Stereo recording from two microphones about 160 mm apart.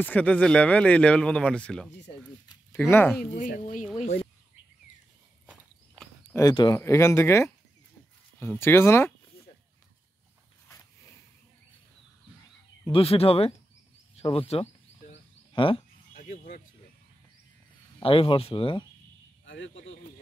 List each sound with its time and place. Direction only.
0.0 s speech: 10° left (ahead or behind)
2.9 s speech: 15° left (ahead or behind)
3.3 s speech: 60° left (ahead or behind)
6.3 s speech: 25° left (ahead or behind)
12.8 s speech: 35° left (ahead or behind)
14.1 s a sound: 35° left (ahead or behind)
16.2 s a sound: 60° left (ahead or behind)
18.0 s speech: 35° left (ahead or behind)